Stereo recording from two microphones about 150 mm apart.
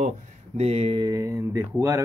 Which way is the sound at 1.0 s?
20° right (ahead or behind).